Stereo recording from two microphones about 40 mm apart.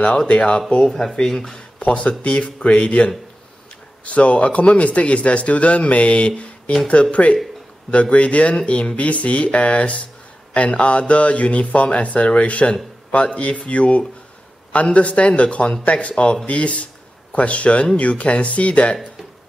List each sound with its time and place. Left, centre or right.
0.3 s speech: left
1.1 s speech: centre
1.9 s speech: left